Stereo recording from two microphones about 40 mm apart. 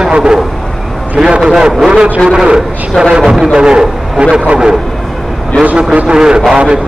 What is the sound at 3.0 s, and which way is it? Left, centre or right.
Speech, centre.